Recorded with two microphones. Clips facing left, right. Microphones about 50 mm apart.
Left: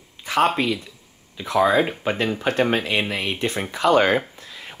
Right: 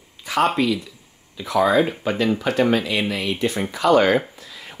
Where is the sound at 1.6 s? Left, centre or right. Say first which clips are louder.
Right 1 dB; left.